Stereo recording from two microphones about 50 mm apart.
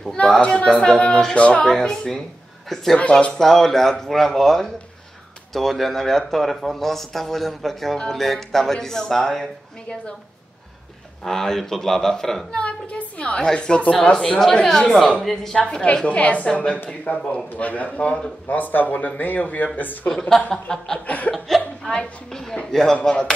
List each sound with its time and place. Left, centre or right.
0.4 s a woman's voice: centre
3.0 s a woman's voice: left
3.3 s speech: centre
11.2 s speech: centre
12.6 s a woman's voice: left
14.7 s speech: centre
15.8 s a woman's voice: left
16.8 s a woman's voice: left
18.6 s speech: left
20.1 s speech: centre